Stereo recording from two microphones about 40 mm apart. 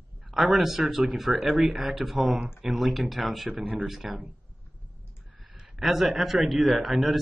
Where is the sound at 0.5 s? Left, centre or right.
Centre.